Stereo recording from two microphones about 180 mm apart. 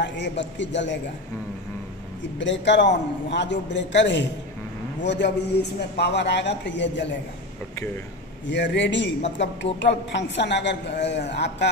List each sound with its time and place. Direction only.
0.0 s a man's voice: 80° left
2.3 s a man's voice: 85° left
8.5 s a man's voice: 80° left